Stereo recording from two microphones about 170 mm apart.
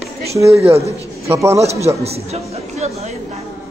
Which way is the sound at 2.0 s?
40° right (ahead or behind).